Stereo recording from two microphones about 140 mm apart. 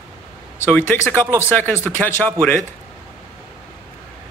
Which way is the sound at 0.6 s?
10° left (ahead or behind).